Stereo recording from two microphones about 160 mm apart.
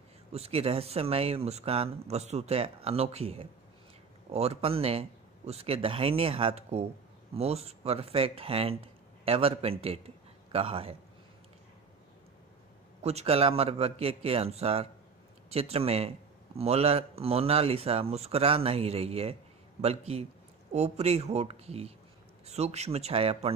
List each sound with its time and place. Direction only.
0.3 s speech: 40° right (ahead or behind)
13.0 s speech: 40° right (ahead or behind)